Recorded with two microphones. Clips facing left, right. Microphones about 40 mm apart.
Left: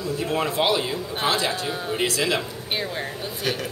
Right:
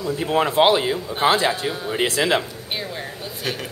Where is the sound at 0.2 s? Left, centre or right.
Right.